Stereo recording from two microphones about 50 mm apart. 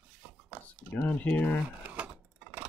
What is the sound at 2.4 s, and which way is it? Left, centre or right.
Clock, right.